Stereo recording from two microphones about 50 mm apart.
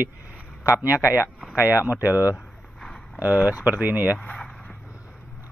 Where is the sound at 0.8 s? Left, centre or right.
Right.